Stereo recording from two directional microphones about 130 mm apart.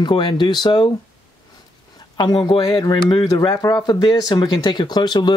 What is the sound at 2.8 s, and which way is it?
Speech, 30° left (ahead or behind).